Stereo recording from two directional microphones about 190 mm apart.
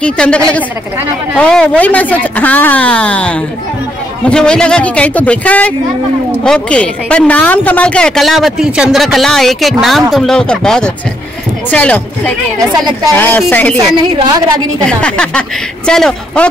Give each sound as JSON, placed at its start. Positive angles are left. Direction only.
{"t": 0.0, "sound": "a woman's voice", "side_deg": 5}
{"t": 13.1, "sound": "a woman's voice", "side_deg": 10}
{"t": 13.7, "sound": "a woman's voice", "side_deg": -25}
{"t": 14.9, "sound": "speech", "side_deg": 5}